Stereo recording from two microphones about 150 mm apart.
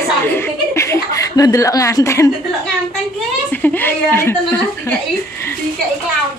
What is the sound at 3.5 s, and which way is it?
Speech, 10° left (ahead or behind).